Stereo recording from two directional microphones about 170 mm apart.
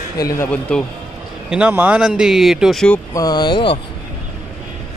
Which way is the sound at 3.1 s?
25° left (ahead or behind).